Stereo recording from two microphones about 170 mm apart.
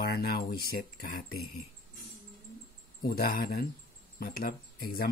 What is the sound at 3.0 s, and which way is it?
Speech, 65° left (ahead or behind).